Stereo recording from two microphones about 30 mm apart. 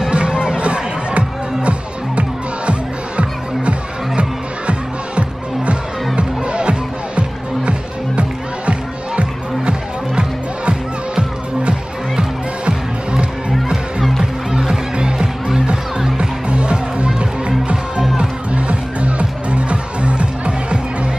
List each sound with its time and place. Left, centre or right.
0.1 s crowd: right
0.6 s music: right
12.6 s music: right
14.7 s music: right
15.1 s music: centre
16.2 s music: right
18.5 s music: right